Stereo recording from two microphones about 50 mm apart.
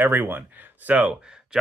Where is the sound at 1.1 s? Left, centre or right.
Centre.